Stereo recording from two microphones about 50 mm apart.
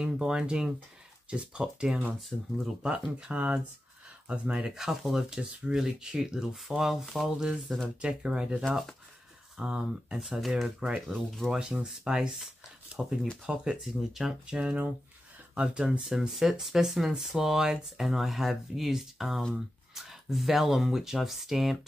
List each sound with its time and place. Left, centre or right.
0.0 s speech: centre
2.1 s speech: centre
2.8 s speech: centre
7.3 s speech: centre
11.1 s speech: centre
11.5 s speech: centre
14.6 s speech: right; by 21.7 s centre